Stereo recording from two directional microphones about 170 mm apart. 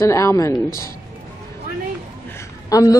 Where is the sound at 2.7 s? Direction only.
20° left (ahead or behind).